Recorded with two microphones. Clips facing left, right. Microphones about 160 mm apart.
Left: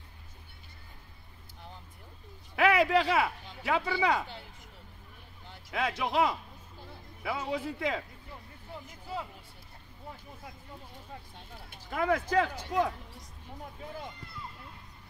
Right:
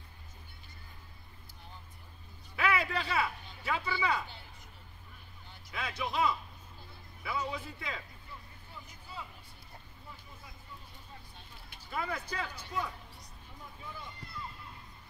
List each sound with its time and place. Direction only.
2.5 s speech: 85° left
5.5 s speech: 75° left (ahead or behind)
12.0 s speech: 90° left